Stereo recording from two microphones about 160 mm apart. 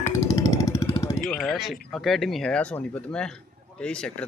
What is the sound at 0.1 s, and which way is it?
Music, 20° left (ahead or behind).